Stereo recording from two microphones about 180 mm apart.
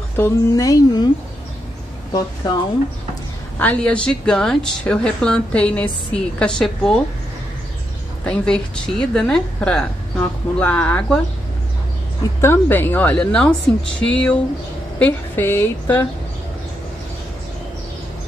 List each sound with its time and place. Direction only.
0.2 s speech: 20° left (ahead or behind)
2.1 s speech: 20° left (ahead or behind)
3.5 s speech: 10° left (ahead or behind)
8.3 s a woman's voice: 5° left (ahead or behind)
12.4 s a woman's voice: 10° left (ahead or behind)